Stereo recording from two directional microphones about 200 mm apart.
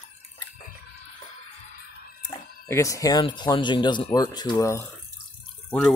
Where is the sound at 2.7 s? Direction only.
15° left (ahead or behind).